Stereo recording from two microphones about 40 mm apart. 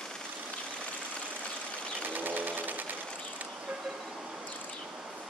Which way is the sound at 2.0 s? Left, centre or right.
Right.